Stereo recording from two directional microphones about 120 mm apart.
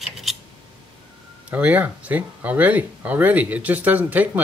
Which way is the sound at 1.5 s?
10° right (ahead or behind).